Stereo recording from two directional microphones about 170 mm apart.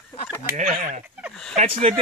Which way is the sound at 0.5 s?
50° right (ahead or behind).